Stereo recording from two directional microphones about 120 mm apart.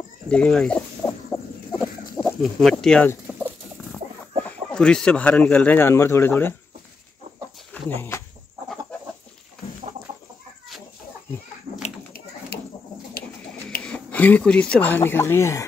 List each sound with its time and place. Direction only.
0.3 s speech: 5° left (ahead or behind)
1.0 s chicken: 25° left (ahead or behind)
2.2 s speech: 5° left (ahead or behind)
3.3 s chicken: 5° right (ahead or behind)
4.5 s speech: 5° left (ahead or behind)
7.7 s speech: 20° left (ahead or behind)
13.7 s speech: 10° left (ahead or behind)